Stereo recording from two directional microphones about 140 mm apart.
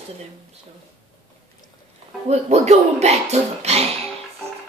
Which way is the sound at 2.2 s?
50° right (ahead or behind).